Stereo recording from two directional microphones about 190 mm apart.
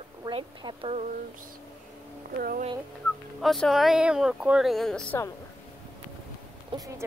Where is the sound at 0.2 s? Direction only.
25° right (ahead or behind).